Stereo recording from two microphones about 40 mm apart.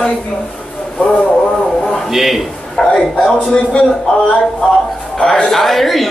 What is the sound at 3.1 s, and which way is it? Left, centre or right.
Speech, left.